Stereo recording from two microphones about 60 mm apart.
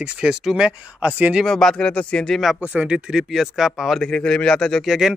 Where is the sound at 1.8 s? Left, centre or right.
Centre.